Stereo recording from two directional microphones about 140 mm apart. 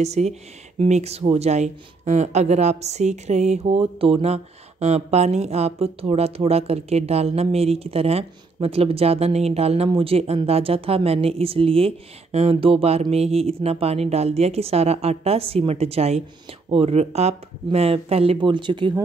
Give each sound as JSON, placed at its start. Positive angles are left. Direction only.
{"t": 0.0, "sound": "speech", "side_deg": -55}